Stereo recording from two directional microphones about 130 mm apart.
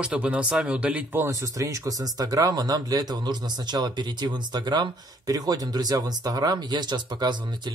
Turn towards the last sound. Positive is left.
turn(degrees=-35)  # may be behind; listen again after turning